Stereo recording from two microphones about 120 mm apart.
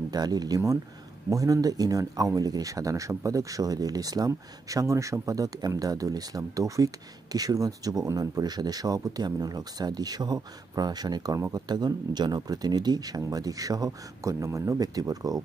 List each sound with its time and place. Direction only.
0.1 s speech: 35° right (ahead or behind)